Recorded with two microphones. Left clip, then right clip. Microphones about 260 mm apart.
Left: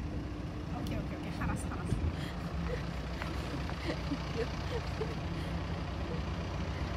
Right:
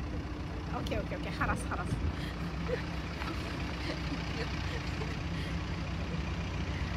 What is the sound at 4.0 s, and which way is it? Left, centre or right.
Speech, centre.